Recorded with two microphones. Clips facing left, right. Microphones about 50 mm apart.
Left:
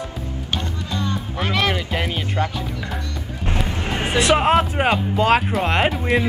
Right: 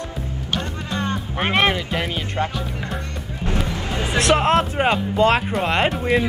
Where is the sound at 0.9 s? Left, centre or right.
Right.